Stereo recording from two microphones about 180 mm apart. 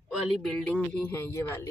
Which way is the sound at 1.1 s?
15° left (ahead or behind).